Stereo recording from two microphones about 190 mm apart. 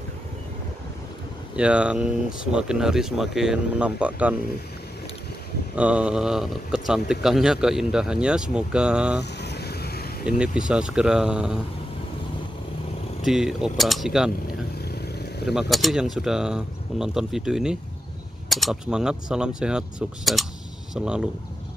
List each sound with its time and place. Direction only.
1.6 s speech: 5° right (ahead or behind)
5.8 s speech: 5° right (ahead or behind)
9.2 s vehicle: 60° left (ahead or behind)
10.2 s speech: 5° right (ahead or behind)
13.2 s speech: centre (ahead or behind)
14.9 s vehicle: 55° left (ahead or behind)
15.7 s speech: centre (ahead or behind)